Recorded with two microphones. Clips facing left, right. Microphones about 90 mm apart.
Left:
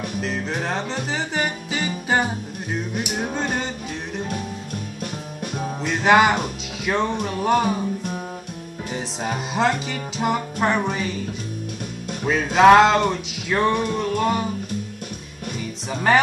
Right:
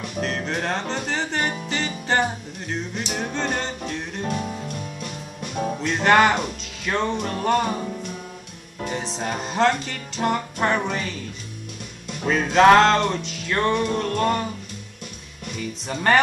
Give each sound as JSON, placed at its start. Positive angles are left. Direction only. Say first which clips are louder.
{"t": 0.2, "sound": "music", "louder": "right 2 dB", "side_deg": 0}
{"t": 5.0, "sound": "music", "louder": "left 3 dB", "side_deg": 55}
{"t": 5.8, "sound": "music", "louder": "left 1 dB", "side_deg": 5}
{"t": 8.9, "sound": "music", "louder": "left 1 dB", "side_deg": 5}
{"t": 12.3, "sound": "music", "louder": "left 1 dB", "side_deg": 5}
{"t": 15.5, "sound": "music", "louder": "even", "side_deg": 5}